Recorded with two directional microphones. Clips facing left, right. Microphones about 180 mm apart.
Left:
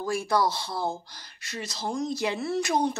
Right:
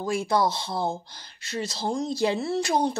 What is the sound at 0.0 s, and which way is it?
Speech, 20° right (ahead or behind).